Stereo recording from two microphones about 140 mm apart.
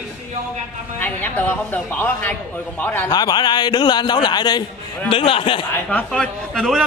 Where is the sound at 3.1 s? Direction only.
30° left (ahead or behind).